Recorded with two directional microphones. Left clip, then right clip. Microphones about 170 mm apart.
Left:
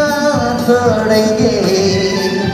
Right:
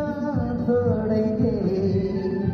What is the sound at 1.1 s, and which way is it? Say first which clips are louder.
Music: left 12 dB; 30° left (ahead or behind).